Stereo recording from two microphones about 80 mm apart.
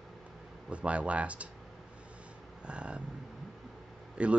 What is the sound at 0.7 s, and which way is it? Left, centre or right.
Speech, centre.